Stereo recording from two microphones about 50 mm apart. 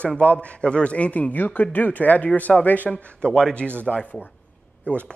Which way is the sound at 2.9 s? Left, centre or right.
Left.